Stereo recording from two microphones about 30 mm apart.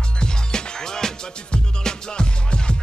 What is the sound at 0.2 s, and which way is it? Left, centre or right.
Music, left.